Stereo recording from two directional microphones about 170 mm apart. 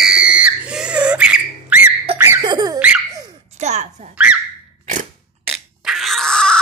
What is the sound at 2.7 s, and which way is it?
Baby laughter, 5° right (ahead or behind).